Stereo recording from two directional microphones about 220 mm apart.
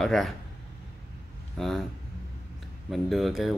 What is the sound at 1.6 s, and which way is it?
Speech, centre (ahead or behind).